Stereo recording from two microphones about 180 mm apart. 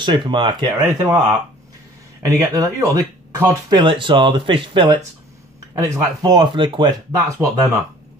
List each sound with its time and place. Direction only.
0.0 s speech: 25° right (ahead or behind)
3.7 s speech: 30° right (ahead or behind)
6.2 s speech: 25° right (ahead or behind)